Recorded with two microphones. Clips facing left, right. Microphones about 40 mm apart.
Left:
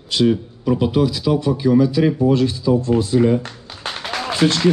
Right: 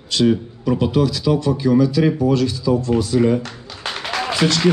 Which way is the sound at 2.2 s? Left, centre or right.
Left.